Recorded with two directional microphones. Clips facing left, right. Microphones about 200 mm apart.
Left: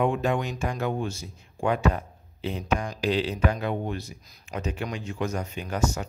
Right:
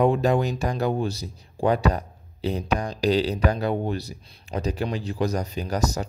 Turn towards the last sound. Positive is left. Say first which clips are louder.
# right 2 dB
turn(degrees=-40)  # may be behind; listen again after turning